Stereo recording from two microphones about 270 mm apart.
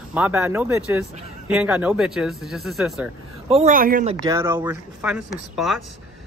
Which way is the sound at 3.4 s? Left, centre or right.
Right.